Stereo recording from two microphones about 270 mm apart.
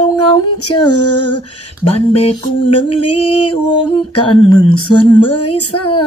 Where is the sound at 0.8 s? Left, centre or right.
Left.